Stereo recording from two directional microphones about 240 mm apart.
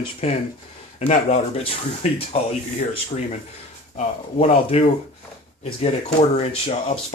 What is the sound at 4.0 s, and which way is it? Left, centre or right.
Speech, left.